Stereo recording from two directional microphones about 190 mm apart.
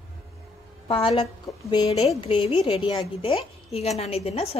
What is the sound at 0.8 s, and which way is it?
A woman's voice, 30° left (ahead or behind).